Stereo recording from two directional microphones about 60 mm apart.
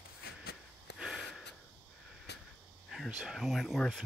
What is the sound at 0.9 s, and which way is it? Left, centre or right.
Gasp, centre.